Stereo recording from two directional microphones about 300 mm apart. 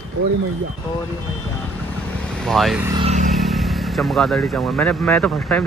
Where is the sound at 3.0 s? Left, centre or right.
Right.